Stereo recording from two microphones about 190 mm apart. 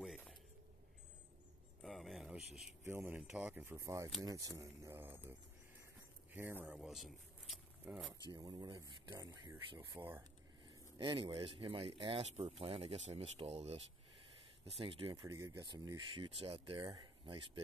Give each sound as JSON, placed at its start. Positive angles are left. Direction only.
{"t": 0.0, "sound": "a sound", "side_deg": 0}
{"t": 1.8, "sound": "a sound", "side_deg": 0}
{"t": 2.8, "sound": "speech", "side_deg": -10}
{"t": 6.3, "sound": "speech", "side_deg": -10}
{"t": 8.3, "sound": "speech", "side_deg": -20}
{"t": 10.7, "sound": "speech", "side_deg": -25}
{"t": 15.2, "sound": "speech", "side_deg": -15}